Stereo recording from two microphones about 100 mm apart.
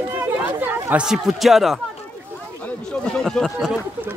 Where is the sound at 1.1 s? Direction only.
5° right (ahead or behind).